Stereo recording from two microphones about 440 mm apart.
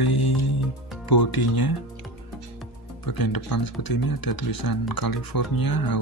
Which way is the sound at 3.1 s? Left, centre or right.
Left.